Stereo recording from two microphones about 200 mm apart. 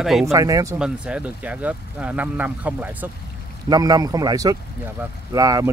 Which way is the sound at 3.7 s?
20° right (ahead or behind).